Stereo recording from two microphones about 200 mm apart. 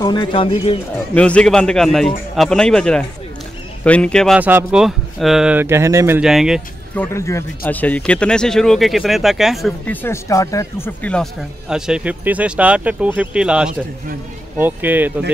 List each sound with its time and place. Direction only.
0.0 s speech: 20° left (ahead or behind)
0.9 s speech: 5° left (ahead or behind)
4.4 s speech: 10° right (ahead or behind)
6.2 s speech: 5° right (ahead or behind)
7.0 s speech: 15° left (ahead or behind)
10.0 s speech: 15° left (ahead or behind)
11.7 s speech: 5° right (ahead or behind)